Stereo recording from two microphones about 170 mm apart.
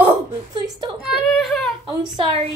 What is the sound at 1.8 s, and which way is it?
Speech, 25° right (ahead or behind).